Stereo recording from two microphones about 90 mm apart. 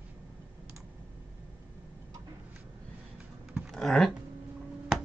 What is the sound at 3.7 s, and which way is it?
Typing, 5° left (ahead or behind).